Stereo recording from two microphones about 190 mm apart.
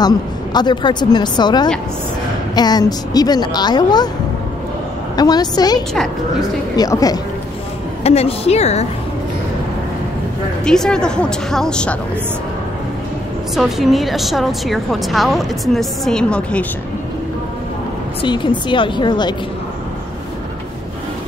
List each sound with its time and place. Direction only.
0.0 s a woman's voice: 20° left (ahead or behind)
5.1 s a woman's voice: 20° left (ahead or behind)
8.0 s a woman's voice: 35° left (ahead or behind)
10.6 s a woman's voice: 5° left (ahead or behind)
13.6 s a woman's voice: centre (ahead or behind)
18.2 s a woman's voice: 25° left (ahead or behind)